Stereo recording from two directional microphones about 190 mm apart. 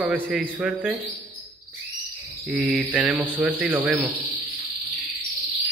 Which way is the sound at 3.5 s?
10° right (ahead or behind).